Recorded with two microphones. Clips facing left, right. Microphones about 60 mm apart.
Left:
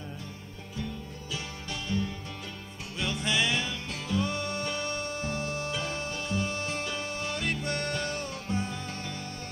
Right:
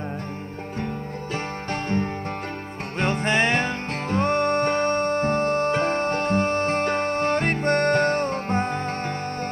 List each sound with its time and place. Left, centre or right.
1.3 s music: right